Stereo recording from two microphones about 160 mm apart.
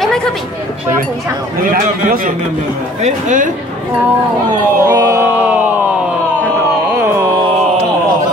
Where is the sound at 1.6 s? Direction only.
60° right (ahead or behind).